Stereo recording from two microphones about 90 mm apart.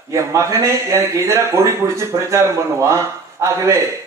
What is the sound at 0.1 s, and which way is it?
Speech, 35° right (ahead or behind).